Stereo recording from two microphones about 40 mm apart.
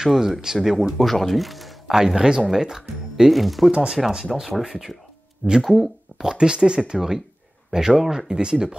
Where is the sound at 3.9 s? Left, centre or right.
Centre.